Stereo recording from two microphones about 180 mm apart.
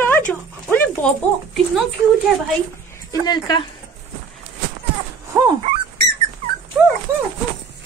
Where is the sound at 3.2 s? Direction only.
25° left (ahead or behind).